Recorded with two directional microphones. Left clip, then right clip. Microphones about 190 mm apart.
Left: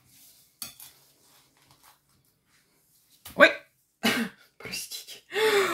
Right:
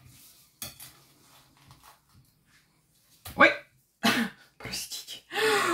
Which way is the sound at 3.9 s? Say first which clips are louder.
Right 1 dB; 25° left (ahead or behind).